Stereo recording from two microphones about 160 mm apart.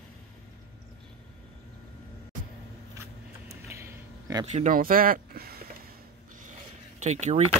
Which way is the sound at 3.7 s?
20° right (ahead or behind).